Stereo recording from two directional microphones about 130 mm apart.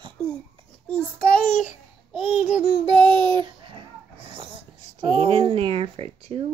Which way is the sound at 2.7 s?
40° right (ahead or behind).